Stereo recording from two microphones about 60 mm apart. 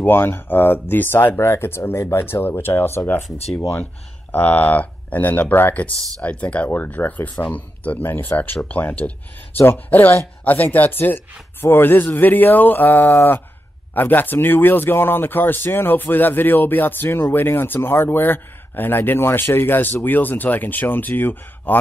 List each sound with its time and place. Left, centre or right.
0.0 s speech: left